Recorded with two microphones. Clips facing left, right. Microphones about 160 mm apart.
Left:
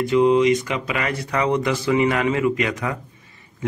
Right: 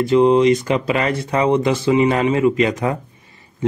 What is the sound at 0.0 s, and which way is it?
A man's voice, 30° right (ahead or behind).